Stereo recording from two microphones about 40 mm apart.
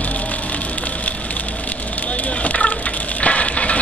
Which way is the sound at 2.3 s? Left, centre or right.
Left.